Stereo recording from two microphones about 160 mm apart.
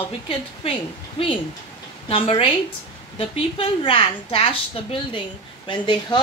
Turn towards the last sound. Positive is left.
turn(degrees=30)  # may be behind; listen again after turning